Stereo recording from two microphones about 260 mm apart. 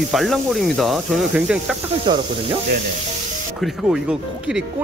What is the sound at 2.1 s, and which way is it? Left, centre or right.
Speech, centre.